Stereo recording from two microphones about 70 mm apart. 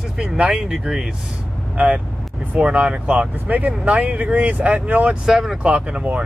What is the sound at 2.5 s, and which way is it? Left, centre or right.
Speech, centre.